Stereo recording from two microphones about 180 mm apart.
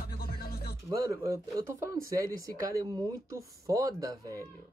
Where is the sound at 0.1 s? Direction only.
55° left (ahead or behind).